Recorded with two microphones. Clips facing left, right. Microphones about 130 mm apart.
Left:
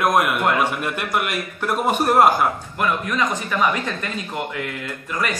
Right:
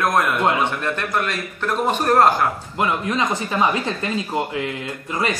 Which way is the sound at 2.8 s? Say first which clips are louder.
Right 1 dB; 25° right (ahead or behind).